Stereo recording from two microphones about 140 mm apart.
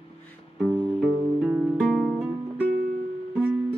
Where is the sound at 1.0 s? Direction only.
10° right (ahead or behind).